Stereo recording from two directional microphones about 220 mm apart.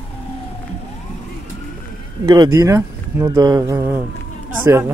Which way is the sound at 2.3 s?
15° right (ahead or behind).